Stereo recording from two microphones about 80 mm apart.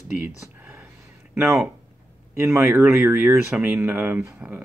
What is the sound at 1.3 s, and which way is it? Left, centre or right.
Speech, right.